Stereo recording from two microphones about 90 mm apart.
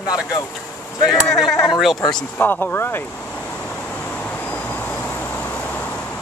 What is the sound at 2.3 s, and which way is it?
Speech, 20° left (ahead or behind).